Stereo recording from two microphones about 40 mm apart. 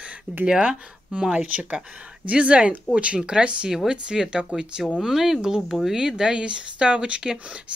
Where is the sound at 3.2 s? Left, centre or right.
Centre.